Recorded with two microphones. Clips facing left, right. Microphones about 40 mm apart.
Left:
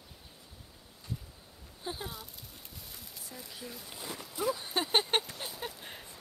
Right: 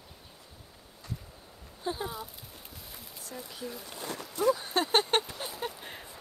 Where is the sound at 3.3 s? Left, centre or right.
Centre.